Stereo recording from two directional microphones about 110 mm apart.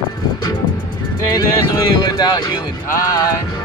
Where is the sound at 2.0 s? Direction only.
40° left (ahead or behind).